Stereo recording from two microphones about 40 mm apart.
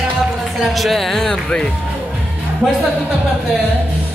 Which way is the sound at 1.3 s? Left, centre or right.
Centre.